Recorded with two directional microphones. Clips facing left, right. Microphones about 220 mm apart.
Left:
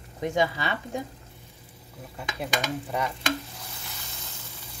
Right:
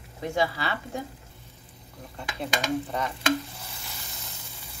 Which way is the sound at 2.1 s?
10° left (ahead or behind).